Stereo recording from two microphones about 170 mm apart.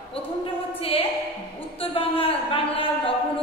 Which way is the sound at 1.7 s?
35° left (ahead or behind).